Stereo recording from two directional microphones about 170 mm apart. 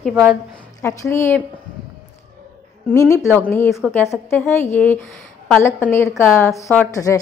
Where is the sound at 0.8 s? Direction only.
15° left (ahead or behind).